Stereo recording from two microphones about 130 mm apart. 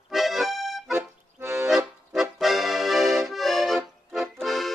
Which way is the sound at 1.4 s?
20° right (ahead or behind).